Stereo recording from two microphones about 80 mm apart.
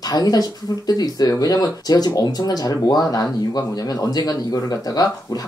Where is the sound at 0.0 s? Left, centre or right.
Left.